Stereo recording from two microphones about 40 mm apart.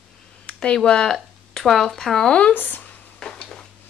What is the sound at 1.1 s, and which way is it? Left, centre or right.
Speech, centre.